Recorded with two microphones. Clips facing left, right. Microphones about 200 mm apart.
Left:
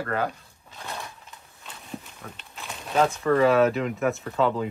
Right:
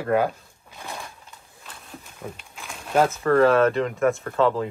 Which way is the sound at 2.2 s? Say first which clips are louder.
Right 6 dB; 15° right (ahead or behind).